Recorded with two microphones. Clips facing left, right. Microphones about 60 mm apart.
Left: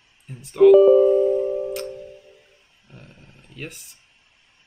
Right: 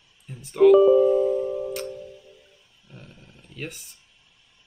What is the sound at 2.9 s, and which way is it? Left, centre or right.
Roar, centre.